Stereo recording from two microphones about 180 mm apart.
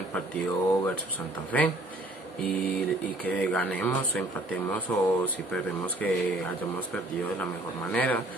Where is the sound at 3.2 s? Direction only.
5° left (ahead or behind).